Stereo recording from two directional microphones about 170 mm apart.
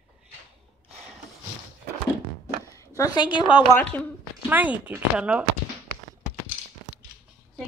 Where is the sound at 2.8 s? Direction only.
20° left (ahead or behind).